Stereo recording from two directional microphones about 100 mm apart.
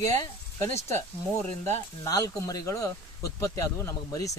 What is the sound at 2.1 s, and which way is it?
Speech, 40° left (ahead or behind).